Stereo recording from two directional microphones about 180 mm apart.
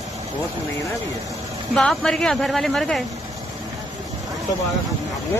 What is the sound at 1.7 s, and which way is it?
Speech, centre (ahead or behind).